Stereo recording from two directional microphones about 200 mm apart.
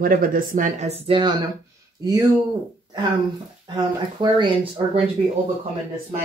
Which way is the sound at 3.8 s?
25° right (ahead or behind).